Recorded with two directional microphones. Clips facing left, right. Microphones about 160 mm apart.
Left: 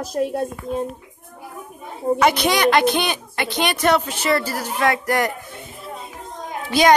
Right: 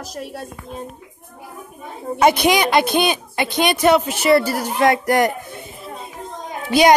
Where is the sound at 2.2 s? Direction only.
15° right (ahead or behind).